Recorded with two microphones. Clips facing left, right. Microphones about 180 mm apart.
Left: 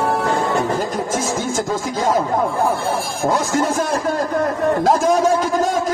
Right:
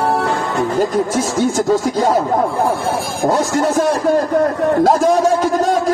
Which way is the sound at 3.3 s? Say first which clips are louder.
Right 3 dB; 45° right (ahead or behind).